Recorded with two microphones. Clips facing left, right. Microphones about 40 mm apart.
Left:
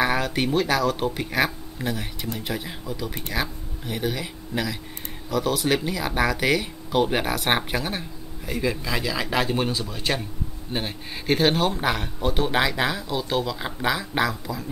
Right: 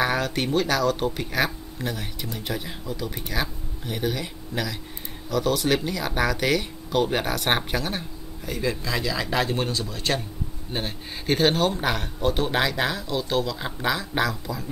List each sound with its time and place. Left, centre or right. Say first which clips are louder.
0.0 s speech: left 1 dB; centre